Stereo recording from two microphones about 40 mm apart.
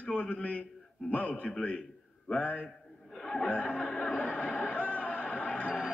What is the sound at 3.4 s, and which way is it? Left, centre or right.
Speech, left.